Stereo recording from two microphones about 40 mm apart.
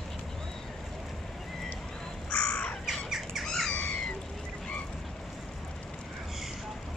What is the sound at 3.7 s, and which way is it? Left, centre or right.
Cat, left.